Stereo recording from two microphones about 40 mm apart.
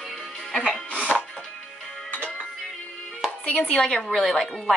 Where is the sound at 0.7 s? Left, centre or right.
Left.